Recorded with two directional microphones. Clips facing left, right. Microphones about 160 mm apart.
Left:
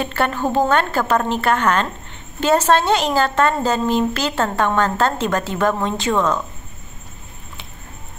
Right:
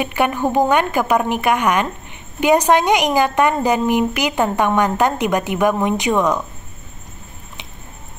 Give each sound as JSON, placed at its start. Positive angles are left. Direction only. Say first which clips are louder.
{"t": 0.0, "sound": "a woman's voice", "louder": "right 2 dB", "side_deg": -15}